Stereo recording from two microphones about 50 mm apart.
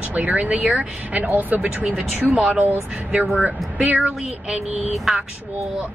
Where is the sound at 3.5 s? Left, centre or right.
Right.